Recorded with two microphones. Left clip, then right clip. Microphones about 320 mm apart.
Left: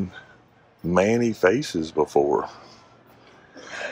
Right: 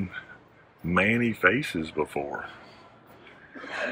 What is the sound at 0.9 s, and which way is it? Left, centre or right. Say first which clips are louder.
Speech: left 4 dB; centre.